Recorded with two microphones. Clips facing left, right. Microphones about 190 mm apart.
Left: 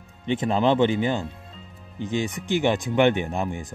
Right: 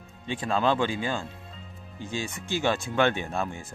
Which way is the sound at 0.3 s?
20° left (ahead or behind).